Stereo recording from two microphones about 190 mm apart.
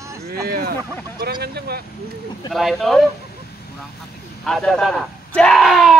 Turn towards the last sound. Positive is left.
turn(degrees=0)  # may be behind; listen again after turning